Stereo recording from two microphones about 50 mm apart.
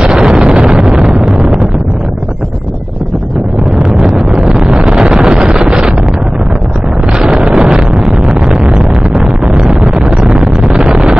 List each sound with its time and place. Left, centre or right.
0.0 s wind noise: centre
3.9 s wind noise: centre
7.2 s a sound: centre